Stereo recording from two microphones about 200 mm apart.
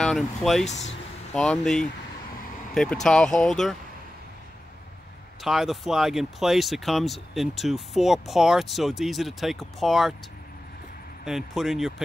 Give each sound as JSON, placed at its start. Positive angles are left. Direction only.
{"t": 0.0, "sound": "speech", "side_deg": 0}
{"t": 0.7, "sound": "speech", "side_deg": 35}
{"t": 1.3, "sound": "speech", "side_deg": 5}
{"t": 5.4, "sound": "speech", "side_deg": 0}
{"t": 11.2, "sound": "speech", "side_deg": 0}